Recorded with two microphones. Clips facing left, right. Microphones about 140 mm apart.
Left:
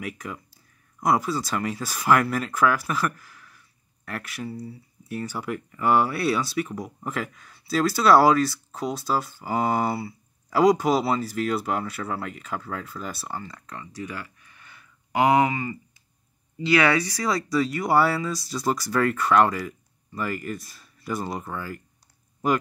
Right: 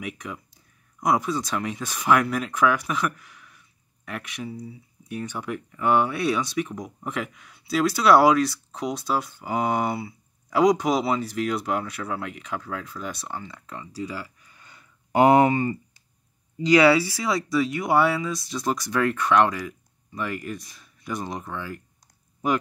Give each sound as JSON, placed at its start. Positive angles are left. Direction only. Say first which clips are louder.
{"t": 0.0, "sound": "speech", "louder": "even", "side_deg": 0}
{"t": 15.1, "sound": "speech", "louder": "right 3 dB", "side_deg": -35}
{"t": 17.2, "sound": "speech", "louder": "even", "side_deg": 0}